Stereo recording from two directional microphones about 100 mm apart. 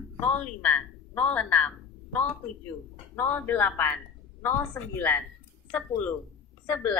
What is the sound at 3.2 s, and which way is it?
A woman's voice, 20° left (ahead or behind).